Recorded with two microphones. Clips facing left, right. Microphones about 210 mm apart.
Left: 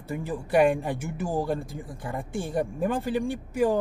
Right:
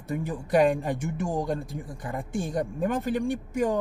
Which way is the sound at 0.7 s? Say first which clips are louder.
Right 1 dB; centre (ahead or behind).